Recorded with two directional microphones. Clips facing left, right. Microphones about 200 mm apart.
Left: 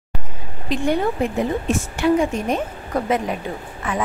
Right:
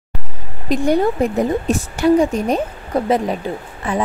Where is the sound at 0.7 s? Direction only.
40° right (ahead or behind).